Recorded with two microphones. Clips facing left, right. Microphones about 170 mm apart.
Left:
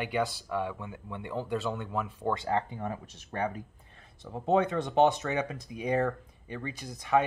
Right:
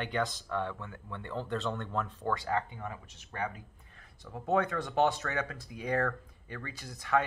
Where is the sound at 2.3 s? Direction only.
25° left (ahead or behind).